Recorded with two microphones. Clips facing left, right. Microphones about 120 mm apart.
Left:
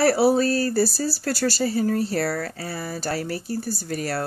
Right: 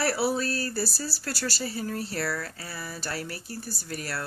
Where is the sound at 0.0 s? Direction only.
35° left (ahead or behind).